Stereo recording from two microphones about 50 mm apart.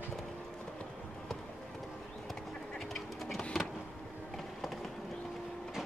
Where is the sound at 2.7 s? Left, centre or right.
Centre.